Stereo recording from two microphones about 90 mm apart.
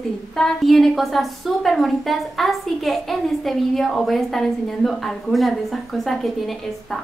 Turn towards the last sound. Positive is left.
turn(degrees=0)  # may be behind; listen again after turning